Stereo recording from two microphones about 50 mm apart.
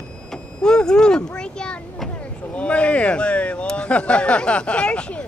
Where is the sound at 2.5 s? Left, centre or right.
Left.